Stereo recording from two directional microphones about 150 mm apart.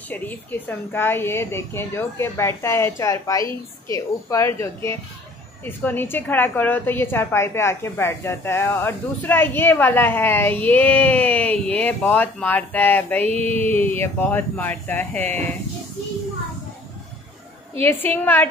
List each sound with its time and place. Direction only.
0.1 s a woman's voice: 10° left (ahead or behind)
13.2 s mantra: 45° right (ahead or behind)
13.5 s a woman's voice: 10° left (ahead or behind)
17.8 s a woman's voice: 15° left (ahead or behind)